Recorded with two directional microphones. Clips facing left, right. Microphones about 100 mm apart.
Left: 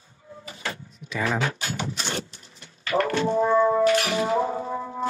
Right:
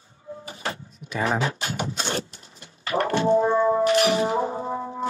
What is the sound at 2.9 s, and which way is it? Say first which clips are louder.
Music: right 2 dB; 30° right (ahead or behind).